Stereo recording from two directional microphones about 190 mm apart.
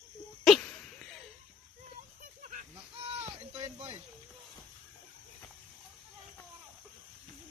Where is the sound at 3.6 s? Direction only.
30° right (ahead or behind).